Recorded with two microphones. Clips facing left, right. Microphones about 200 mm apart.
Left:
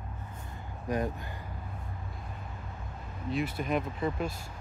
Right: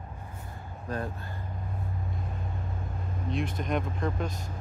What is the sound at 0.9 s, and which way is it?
Speech, 15° left (ahead or behind).